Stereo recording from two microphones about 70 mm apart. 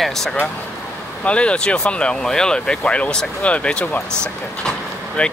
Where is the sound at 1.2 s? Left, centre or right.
Centre.